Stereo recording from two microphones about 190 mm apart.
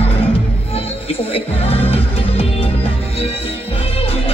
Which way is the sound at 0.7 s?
30° left (ahead or behind).